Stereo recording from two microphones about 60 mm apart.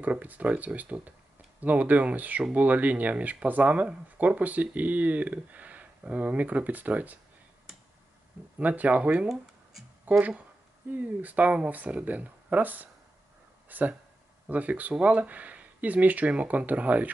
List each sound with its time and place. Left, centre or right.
0.0 s speech: right
8.5 s speech: right